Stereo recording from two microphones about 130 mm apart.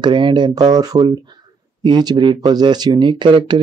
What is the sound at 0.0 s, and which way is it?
Speech, 35° right (ahead or behind).